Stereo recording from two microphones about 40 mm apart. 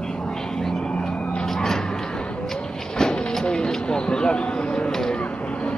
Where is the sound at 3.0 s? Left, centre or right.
Centre.